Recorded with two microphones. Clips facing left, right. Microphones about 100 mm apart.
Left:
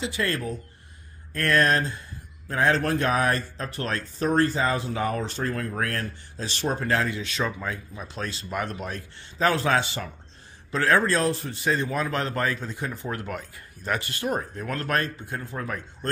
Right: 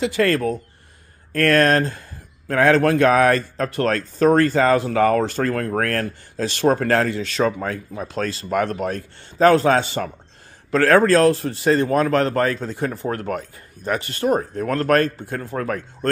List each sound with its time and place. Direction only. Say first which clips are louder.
0.0 s speech: right 9 dB; 65° right (ahead or behind)
8.1 s a man's voice: right 9 dB; 65° right (ahead or behind); by 10.1 s 45° right (ahead or behind)
10.7 s a man's voice: right 7 dB; 60° right (ahead or behind)
11.1 s speech: right 9 dB; 75° right (ahead or behind); by 12.3 s 60° right (ahead or behind)
12.3 s a man's voice: right 7 dB; 45° right (ahead or behind)
13.8 s a man's voice: right 7 dB; 35° right (ahead or behind); by 16.1 s 60° right (ahead or behind)